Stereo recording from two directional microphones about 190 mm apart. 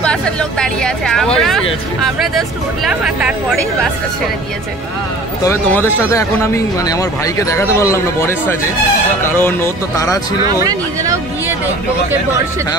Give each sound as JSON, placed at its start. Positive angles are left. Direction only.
{"t": 0.0, "sound": "speech", "side_deg": 5}
{"t": 5.4, "sound": "speech", "side_deg": 10}
{"t": 10.4, "sound": "speech", "side_deg": -20}